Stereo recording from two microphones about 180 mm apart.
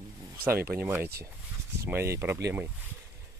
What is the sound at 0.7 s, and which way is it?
Speech, 10° right (ahead or behind).